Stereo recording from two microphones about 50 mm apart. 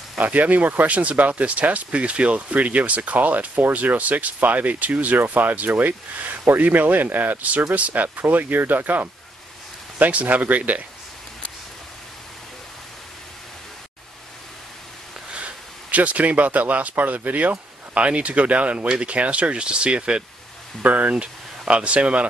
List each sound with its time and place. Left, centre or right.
0.2 s speech: right
15.3 s speech: right